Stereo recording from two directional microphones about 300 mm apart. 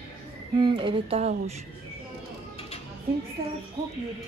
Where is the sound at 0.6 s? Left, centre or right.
Centre.